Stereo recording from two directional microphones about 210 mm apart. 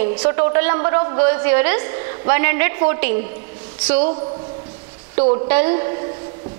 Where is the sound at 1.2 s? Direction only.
15° right (ahead or behind).